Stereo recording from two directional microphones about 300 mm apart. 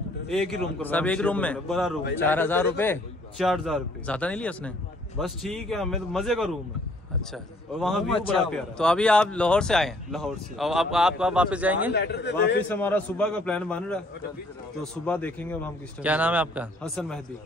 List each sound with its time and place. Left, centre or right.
0.3 s a man's voice: centre
7.7 s speech: centre
8.1 s a man's voice: centre
8.5 s speech: centre
11.9 s a man's voice: left
12.6 s speech: centre
16.0 s speech: centre